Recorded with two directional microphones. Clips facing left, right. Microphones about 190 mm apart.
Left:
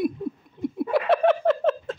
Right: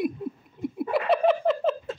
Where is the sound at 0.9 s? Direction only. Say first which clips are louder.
Left 2 dB; centre (ahead or behind).